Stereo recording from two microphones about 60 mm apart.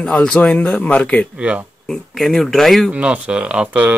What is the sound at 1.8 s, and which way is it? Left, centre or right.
Speech, centre.